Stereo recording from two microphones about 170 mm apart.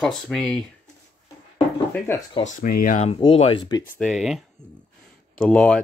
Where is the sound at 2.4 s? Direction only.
55° left (ahead or behind).